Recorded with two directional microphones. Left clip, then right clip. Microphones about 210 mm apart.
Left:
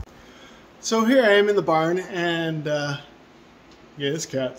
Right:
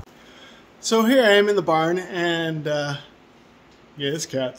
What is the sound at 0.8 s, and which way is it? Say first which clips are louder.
Speech: right 1 dB; 25° right (ahead or behind).